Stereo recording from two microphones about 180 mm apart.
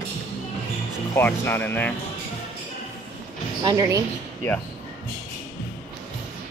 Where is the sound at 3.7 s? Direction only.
20° right (ahead or behind).